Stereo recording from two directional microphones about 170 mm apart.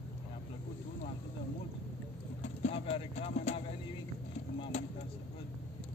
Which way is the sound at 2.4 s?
40° left (ahead or behind).